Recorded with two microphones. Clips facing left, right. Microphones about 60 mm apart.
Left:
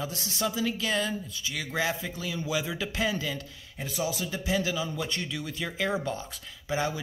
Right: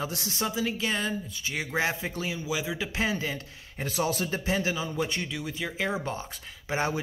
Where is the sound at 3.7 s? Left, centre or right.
Right.